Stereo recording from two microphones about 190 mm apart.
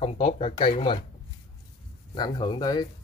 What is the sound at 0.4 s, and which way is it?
Speech, 30° left (ahead or behind).